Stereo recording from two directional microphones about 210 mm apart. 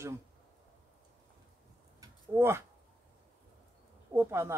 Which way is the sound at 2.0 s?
10° right (ahead or behind).